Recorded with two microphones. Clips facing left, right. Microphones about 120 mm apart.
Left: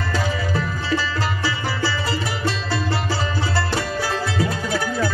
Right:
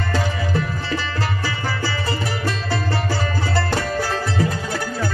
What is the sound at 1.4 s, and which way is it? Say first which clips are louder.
Music: left 1 dB; 50° right (ahead or behind).